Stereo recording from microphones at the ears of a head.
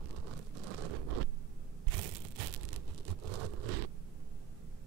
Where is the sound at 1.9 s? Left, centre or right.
Right.